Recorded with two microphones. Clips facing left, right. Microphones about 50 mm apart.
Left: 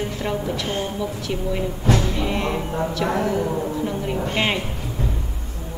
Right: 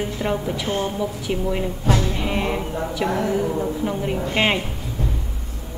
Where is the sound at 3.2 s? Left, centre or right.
Centre.